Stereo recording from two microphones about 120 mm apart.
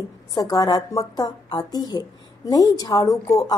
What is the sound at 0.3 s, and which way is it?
A woman's voice, 30° left (ahead or behind).